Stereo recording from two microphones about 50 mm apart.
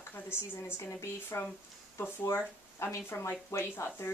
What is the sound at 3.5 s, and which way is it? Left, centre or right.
Speech, left.